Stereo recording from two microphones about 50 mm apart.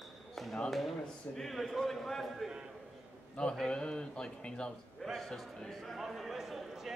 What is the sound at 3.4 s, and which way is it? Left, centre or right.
Speech, centre.